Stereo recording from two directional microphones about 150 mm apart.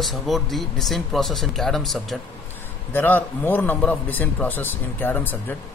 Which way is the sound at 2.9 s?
10° left (ahead or behind).